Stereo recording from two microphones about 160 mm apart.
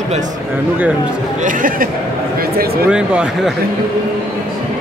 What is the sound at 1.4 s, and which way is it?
Speech, 55° right (ahead or behind).